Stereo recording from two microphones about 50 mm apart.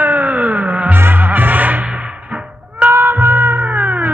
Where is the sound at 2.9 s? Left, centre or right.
Right.